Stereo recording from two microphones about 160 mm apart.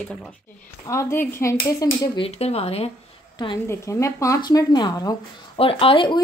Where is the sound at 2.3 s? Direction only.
40° left (ahead or behind).